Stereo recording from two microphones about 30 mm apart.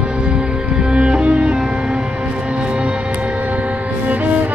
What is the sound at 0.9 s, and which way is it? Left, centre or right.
Music, right.